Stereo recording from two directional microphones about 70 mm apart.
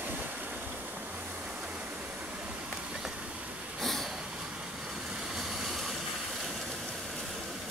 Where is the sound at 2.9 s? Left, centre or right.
Centre.